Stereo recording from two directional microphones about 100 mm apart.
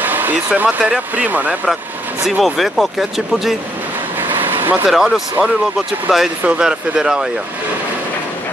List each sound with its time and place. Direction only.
0.0 s speech: 20° right (ahead or behind)
2.2 s speech: centre (ahead or behind)
4.2 s vehicle: 20° right (ahead or behind)
4.8 s speech: centre (ahead or behind)